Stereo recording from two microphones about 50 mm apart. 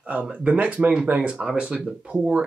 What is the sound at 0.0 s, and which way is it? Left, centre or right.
Speech, right.